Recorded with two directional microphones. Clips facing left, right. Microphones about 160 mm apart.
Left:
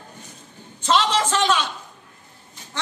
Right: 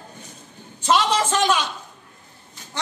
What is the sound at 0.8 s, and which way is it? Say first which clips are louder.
Speech: right 1 dB; 10° right (ahead or behind).